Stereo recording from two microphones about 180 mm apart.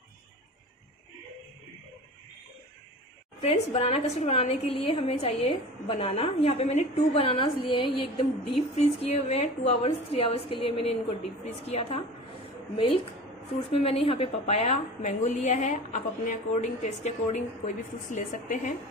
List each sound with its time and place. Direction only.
3.3 s a woman's voice: 35° left (ahead or behind)
13.7 s a woman's voice: 30° left (ahead or behind)